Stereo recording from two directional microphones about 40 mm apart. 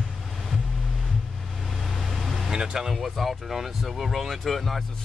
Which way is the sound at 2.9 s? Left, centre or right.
Centre.